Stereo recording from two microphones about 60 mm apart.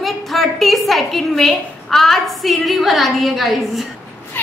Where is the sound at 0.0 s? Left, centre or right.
Centre.